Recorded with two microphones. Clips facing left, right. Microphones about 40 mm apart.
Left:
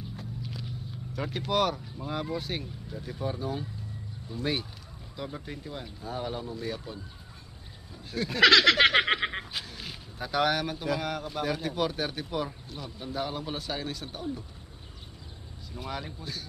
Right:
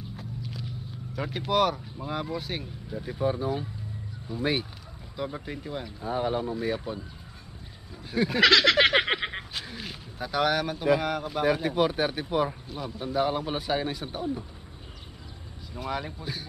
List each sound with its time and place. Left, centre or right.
0.1 s a man's voice: centre
8.1 s a man's voice: centre
8.4 s a sound: centre
9.8 s a man's voice: centre
15.8 s a man's voice: centre